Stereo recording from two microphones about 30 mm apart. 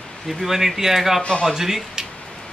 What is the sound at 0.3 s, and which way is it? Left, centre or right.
Speech, centre.